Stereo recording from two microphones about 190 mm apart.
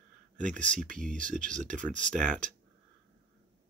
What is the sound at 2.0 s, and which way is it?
Speech, 5° left (ahead or behind).